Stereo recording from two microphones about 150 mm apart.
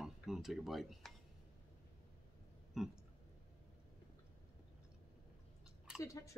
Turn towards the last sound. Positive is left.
turn(degrees=20)  # may be behind; listen again after turning